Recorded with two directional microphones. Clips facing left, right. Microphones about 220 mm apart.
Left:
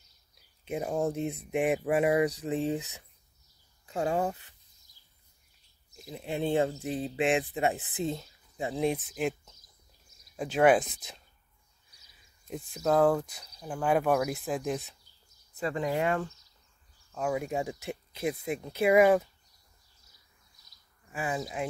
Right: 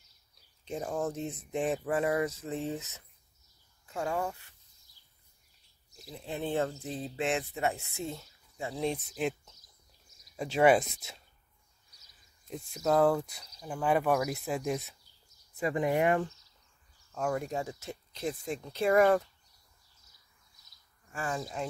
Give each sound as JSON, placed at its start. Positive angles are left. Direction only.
{"t": 0.7, "sound": "speech", "side_deg": 10}
{"t": 6.0, "sound": "speech", "side_deg": 20}
{"t": 10.3, "sound": "speech", "side_deg": 0}
{"t": 12.4, "sound": "speech", "side_deg": 0}
{"t": 15.5, "sound": "speech", "side_deg": -15}
{"t": 17.1, "sound": "speech", "side_deg": 5}
{"t": 21.1, "sound": "speech", "side_deg": 5}